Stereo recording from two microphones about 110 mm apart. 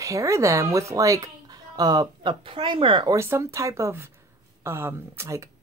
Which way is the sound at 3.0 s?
25° right (ahead or behind).